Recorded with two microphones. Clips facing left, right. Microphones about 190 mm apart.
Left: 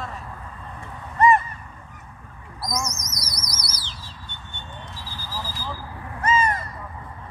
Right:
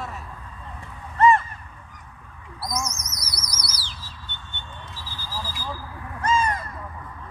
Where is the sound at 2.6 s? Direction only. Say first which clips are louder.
Left 1 dB; 10° right (ahead or behind).